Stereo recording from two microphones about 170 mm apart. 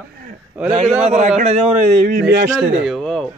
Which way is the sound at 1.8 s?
65° right (ahead or behind).